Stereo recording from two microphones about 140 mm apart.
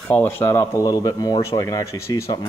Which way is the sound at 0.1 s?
15° left (ahead or behind).